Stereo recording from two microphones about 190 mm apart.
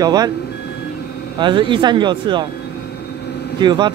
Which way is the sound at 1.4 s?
25° right (ahead or behind).